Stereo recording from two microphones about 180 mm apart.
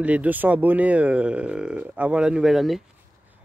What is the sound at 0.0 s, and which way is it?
Speech, 10° right (ahead or behind).